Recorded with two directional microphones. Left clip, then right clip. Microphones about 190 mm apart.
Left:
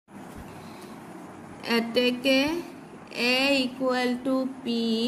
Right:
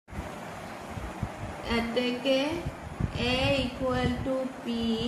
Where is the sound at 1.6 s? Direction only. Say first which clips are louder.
Left 5 dB; 65° left (ahead or behind).